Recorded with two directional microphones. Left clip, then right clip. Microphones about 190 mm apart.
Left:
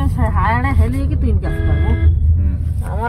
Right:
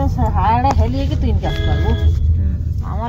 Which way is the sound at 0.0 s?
80° left.